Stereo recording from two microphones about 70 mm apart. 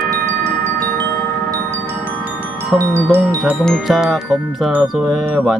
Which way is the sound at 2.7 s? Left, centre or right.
Centre.